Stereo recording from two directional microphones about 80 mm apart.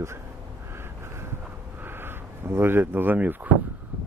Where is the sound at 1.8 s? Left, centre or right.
Right.